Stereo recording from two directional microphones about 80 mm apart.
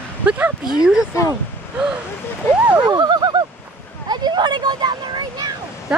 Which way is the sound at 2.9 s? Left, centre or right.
Right.